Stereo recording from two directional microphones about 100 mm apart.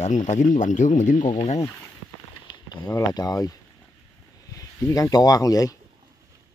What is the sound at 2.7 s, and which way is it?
Speech, 40° left (ahead or behind).